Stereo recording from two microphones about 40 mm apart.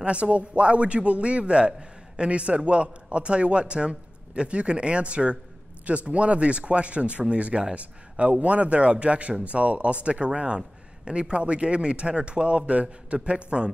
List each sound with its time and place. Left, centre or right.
0.0 s a man's voice: right